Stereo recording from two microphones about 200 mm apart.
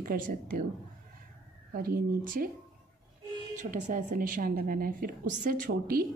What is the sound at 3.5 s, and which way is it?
A woman's voice, 40° right (ahead or behind).